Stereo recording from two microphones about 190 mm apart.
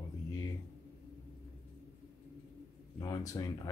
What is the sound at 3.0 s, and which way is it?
Speech, 20° left (ahead or behind).